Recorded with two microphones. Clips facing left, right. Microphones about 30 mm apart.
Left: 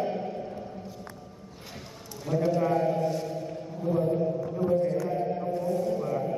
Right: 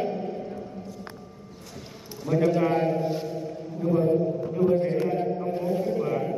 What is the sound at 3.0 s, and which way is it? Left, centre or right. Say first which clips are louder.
Chant: right 1 dB; right.